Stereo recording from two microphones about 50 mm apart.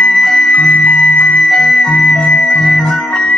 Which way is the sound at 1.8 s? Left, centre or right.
Centre.